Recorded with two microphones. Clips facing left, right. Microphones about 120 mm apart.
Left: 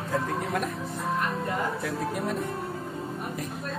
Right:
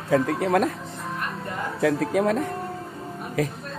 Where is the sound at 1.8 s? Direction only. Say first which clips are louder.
Right 8 dB; 90° right.